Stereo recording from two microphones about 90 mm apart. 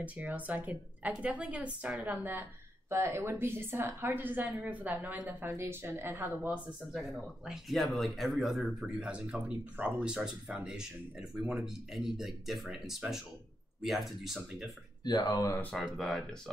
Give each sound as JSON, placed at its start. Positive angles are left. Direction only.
{"t": 0.0, "sound": "a woman's voice", "side_deg": -15}
{"t": 6.9, "sound": "speech", "side_deg": 0}
{"t": 8.8, "sound": "speech", "side_deg": -15}
{"t": 15.0, "sound": "speech", "side_deg": 50}
{"t": 16.0, "sound": "speech", "side_deg": 5}